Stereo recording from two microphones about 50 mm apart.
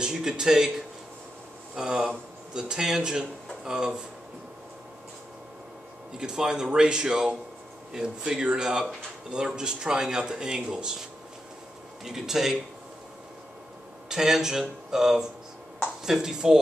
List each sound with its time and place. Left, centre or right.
0.0 s speech: centre
1.8 s speech: centre
6.1 s speech: centre
12.0 s speech: centre
14.0 s speech: centre